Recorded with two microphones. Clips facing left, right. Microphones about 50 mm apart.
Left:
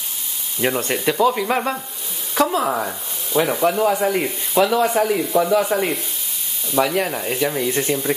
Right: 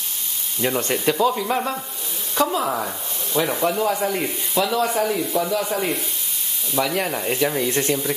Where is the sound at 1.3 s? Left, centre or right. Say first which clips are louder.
Left 2 dB; left.